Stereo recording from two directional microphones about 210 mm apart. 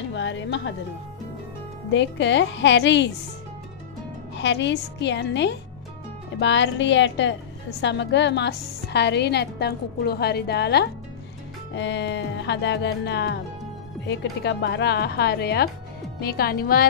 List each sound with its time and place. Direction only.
0.1 s speech: 60° left (ahead or behind)
1.9 s speech: 60° left (ahead or behind)
4.4 s a woman's voice: 60° left (ahead or behind)